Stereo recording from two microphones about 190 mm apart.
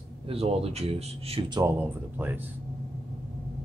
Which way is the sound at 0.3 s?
30° right (ahead or behind).